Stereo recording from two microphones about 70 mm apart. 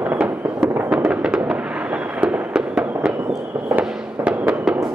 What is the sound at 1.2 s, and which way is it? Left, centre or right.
Fireworks, centre.